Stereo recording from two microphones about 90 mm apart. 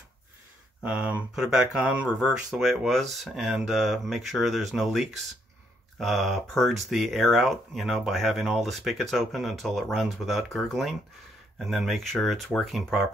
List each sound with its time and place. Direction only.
0.8 s speech: 15° right (ahead or behind)
1.3 s speech: 5° right (ahead or behind)
2.6 s speech: centre (ahead or behind)